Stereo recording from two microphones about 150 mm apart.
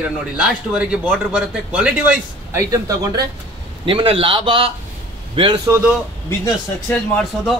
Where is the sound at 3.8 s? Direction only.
35° right (ahead or behind).